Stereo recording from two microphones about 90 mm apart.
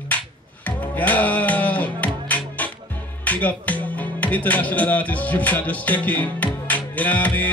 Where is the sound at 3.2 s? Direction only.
15° left (ahead or behind).